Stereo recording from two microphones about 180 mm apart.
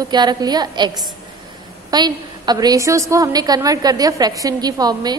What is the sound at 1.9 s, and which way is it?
A woman's voice, 25° right (ahead or behind).